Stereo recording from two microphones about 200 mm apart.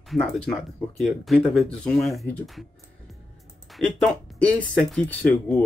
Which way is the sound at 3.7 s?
Centre (ahead or behind).